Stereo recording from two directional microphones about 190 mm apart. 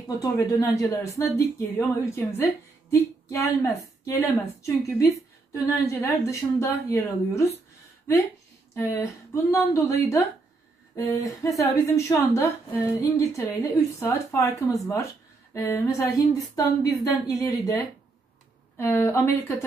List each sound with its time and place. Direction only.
0.2 s speech: 15° left (ahead or behind)
5.5 s speech: 15° left (ahead or behind)
8.7 s speech: 15° left (ahead or behind)
18.8 s speech: 10° left (ahead or behind)